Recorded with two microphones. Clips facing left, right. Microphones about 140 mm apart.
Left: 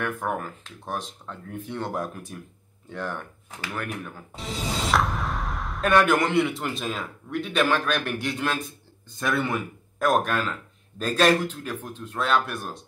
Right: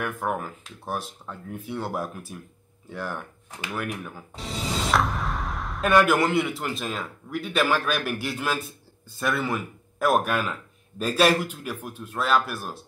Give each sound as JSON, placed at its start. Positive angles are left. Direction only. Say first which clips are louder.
{"t": 0.0, "sound": "speech", "louder": "even", "side_deg": -5}